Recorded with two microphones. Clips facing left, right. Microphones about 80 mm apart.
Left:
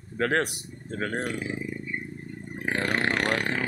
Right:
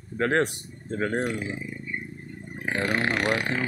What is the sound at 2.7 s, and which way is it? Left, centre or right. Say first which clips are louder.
Speech: right 1 dB; centre.